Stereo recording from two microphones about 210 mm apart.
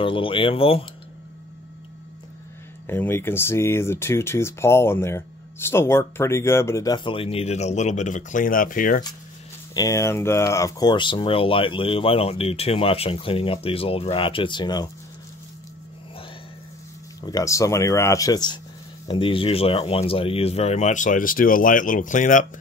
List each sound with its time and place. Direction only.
0.0 s speech: 25° left (ahead or behind)
2.9 s speech: 10° left (ahead or behind); by 9.0 s 40° left (ahead or behind)
9.8 s speech: 15° left (ahead or behind)
17.2 s speech: 15° left (ahead or behind); by 22.5 s 35° left (ahead or behind)